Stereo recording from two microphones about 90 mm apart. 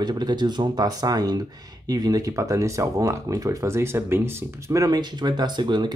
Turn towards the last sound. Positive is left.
turn(degrees=-55)  # may be behind; listen again after turning